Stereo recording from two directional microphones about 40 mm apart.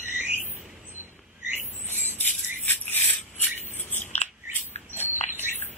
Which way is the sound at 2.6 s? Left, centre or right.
Left.